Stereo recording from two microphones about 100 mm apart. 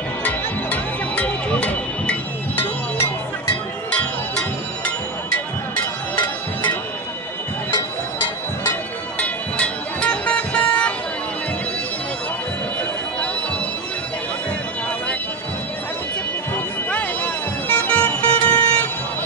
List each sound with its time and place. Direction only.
0.2 s music: 15° left (ahead or behind)
3.9 s music: 10° left (ahead or behind)
9.2 s music: 15° left (ahead or behind)
16.5 s music: 15° left (ahead or behind)